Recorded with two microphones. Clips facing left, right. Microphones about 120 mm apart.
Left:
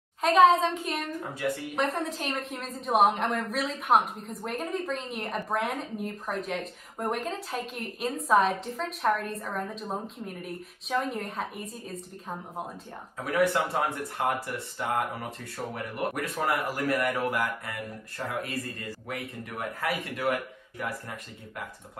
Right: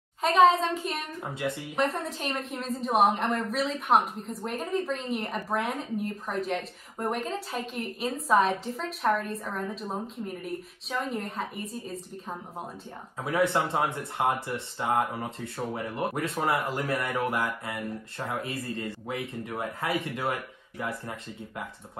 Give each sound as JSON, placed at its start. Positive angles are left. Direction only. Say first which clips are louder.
{"t": 0.2, "sound": "a woman's voice", "louder": "left 1 dB", "side_deg": 0}
{"t": 1.3, "sound": "speech", "louder": "even", "side_deg": -20}
{"t": 1.8, "sound": "a woman's voice", "louder": "right 2 dB", "side_deg": 0}
{"t": 13.2, "sound": "speech", "louder": "even", "side_deg": -25}